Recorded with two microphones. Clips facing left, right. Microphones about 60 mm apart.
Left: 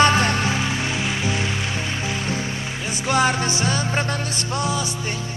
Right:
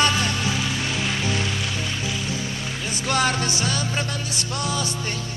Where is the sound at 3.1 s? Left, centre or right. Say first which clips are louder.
Left 3 dB; centre; by 4.4 s left.